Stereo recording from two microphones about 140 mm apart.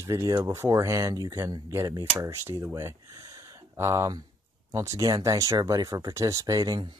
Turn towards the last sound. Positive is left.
turn(degrees=-25)  # may be behind; listen again after turning